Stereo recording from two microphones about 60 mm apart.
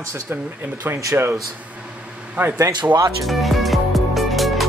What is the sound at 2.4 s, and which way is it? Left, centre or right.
Speech, right.